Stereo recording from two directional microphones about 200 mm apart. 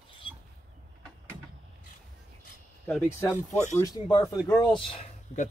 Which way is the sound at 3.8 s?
20° left (ahead or behind).